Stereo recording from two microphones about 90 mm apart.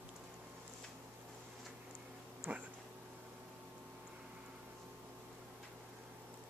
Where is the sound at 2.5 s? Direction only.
15° right (ahead or behind).